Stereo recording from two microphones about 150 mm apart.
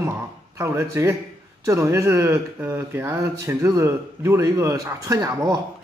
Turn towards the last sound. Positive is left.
turn(degrees=-20)  # may be behind; listen again after turning